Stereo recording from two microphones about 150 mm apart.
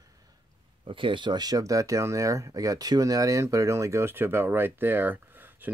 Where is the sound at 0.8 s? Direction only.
35° right (ahead or behind).